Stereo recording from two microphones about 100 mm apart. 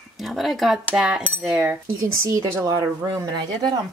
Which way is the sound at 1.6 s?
20° right (ahead or behind).